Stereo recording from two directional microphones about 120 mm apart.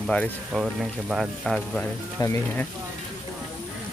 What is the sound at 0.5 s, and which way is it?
Speech, centre (ahead or behind).